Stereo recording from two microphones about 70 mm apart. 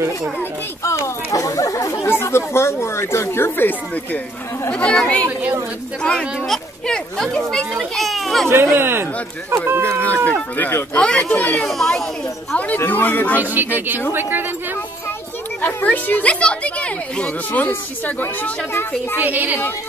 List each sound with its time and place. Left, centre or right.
0.8 s speech: left
2.0 s speech: left
4.6 s a child's voice: centre
8.7 s speech: right
9.8 s a woman's voice: centre
11.6 s a child's voice: centre
12.5 s a woman's voice: left
13.4 s speech: right
15.6 s a woman's voice: left
19.1 s speech: right